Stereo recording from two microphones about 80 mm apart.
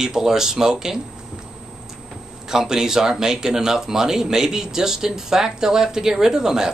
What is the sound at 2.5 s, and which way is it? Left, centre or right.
Speech, centre.